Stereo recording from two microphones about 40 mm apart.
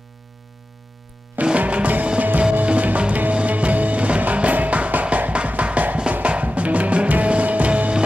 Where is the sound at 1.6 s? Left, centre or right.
Right.